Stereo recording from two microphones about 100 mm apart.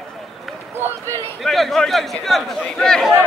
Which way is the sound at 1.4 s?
Centre (ahead or behind).